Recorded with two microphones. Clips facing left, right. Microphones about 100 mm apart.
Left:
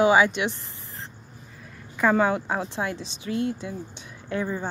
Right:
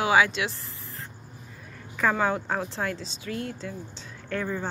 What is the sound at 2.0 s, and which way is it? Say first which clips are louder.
Speech: left 4 dB; 20° left (ahead or behind).